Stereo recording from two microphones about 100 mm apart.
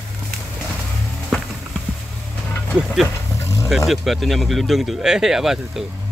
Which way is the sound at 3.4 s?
30° left (ahead or behind).